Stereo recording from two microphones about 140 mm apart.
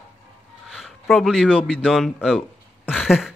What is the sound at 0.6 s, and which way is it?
A man's voice, centre (ahead or behind).